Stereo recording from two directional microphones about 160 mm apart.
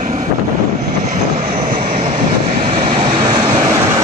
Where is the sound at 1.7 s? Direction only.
45° right (ahead or behind).